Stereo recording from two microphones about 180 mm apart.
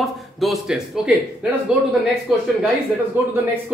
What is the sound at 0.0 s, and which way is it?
Speech, centre (ahead or behind).